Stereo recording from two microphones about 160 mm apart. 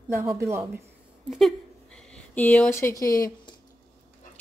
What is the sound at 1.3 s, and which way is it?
Speech, 5° left (ahead or behind).